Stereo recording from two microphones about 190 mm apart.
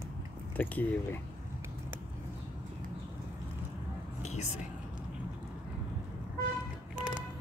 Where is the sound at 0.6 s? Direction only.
10° left (ahead or behind).